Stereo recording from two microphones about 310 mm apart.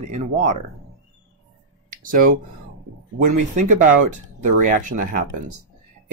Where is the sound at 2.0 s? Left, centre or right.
Right.